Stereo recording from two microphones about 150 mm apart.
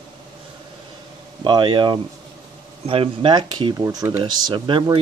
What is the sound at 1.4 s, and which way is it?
Speech, 35° right (ahead or behind).